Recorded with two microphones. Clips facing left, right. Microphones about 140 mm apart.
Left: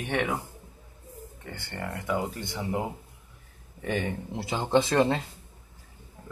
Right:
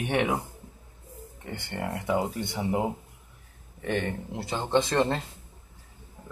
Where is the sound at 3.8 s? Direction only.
Centre (ahead or behind).